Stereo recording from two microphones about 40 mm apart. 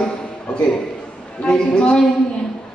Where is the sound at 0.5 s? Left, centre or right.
Left.